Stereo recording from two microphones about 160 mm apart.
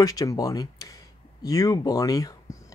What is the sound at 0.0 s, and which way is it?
Speech, 20° left (ahead or behind).